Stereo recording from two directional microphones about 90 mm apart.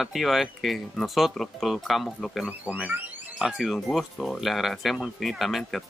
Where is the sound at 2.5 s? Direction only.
15° right (ahead or behind).